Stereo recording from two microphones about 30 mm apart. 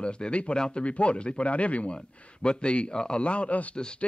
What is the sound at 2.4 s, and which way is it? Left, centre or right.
Speech, left.